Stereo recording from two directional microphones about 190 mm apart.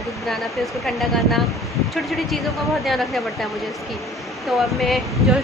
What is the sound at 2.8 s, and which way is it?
A woman's voice, centre (ahead or behind).